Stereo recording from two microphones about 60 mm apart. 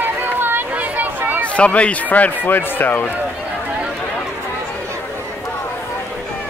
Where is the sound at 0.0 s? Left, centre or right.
Right.